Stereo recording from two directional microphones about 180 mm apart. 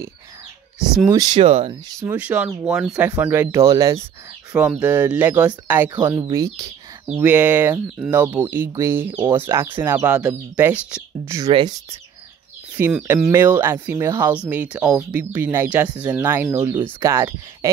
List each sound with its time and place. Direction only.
1.1 s speech: 20° right (ahead or behind)
1.4 s speech: 30° right (ahead or behind)
2.0 s speech: 5° right (ahead or behind)
4.5 s speech: 5° right (ahead or behind)
12.7 s speech: 10° right (ahead or behind)